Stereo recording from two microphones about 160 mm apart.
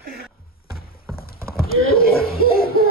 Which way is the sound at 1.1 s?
70° left (ahead or behind).